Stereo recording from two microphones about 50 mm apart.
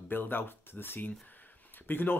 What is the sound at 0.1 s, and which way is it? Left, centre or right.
Speech, left.